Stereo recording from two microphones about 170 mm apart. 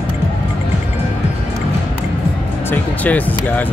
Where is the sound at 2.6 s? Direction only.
10° left (ahead or behind).